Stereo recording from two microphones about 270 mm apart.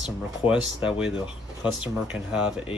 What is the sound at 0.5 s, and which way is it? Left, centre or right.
Speech, centre.